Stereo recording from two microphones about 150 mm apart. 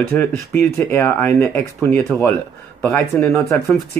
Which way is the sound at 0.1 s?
15° left (ahead or behind).